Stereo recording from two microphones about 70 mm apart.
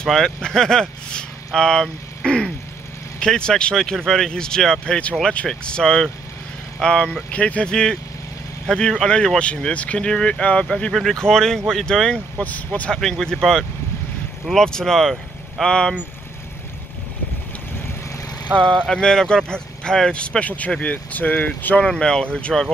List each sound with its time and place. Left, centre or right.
0.0 s speech: centre
10.9 s speech: centre; by 12.9 s left
12.9 s speech: centre
18.5 s speech: right
18.9 s speech: centre
21.8 s speech: centre